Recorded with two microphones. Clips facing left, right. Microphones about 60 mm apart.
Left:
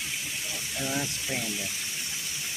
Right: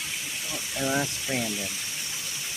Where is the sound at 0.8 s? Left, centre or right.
Right.